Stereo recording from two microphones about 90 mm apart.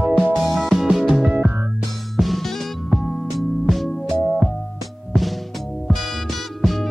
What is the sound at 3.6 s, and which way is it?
Music, centre (ahead or behind).